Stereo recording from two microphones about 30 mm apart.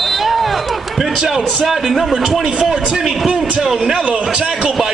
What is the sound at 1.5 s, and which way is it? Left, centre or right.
A man's voice, centre.